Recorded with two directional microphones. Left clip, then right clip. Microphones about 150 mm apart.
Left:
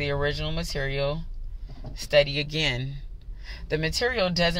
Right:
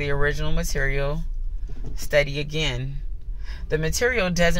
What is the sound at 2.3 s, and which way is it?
Speech, 20° left (ahead or behind).